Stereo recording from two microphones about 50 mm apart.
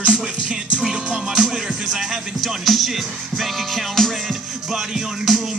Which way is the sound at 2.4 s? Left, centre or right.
Centre.